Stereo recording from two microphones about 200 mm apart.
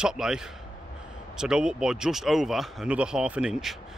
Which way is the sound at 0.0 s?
5° right (ahead or behind).